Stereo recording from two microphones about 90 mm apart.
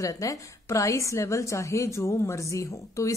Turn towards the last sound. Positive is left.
turn(degrees=35)  # may be behind; listen again after turning